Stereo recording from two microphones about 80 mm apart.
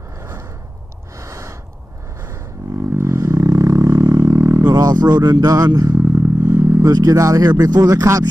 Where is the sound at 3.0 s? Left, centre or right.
Right.